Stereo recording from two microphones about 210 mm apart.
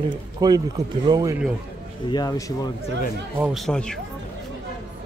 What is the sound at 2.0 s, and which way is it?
Speech, 20° left (ahead or behind).